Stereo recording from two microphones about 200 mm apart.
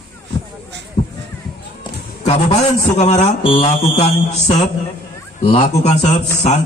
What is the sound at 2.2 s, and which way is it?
A man's voice, 35° left (ahead or behind).